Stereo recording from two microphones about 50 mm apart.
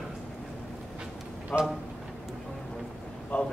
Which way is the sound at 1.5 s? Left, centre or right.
Left.